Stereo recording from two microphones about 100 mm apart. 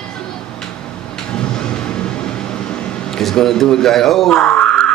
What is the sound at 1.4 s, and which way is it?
Vehicle, 10° left (ahead or behind).